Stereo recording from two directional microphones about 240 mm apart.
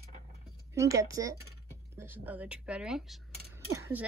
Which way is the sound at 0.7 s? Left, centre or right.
Centre.